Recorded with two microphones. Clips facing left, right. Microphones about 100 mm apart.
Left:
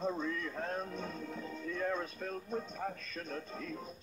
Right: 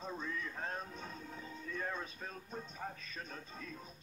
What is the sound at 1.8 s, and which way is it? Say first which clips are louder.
Speech: left 6 dB; 60° left (ahead or behind).